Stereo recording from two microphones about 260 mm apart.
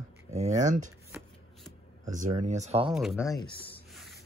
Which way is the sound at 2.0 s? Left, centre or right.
Right.